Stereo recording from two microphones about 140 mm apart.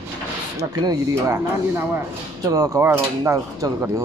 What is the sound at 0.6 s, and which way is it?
Speech, 25° right (ahead or behind).